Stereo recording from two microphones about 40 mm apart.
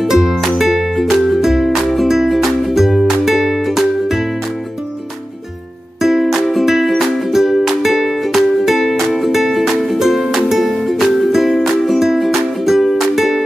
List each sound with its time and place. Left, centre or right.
0.0 s music: centre
5.9 s music: centre